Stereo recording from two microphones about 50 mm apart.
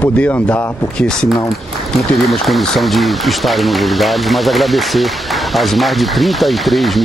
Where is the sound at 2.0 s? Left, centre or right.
Centre.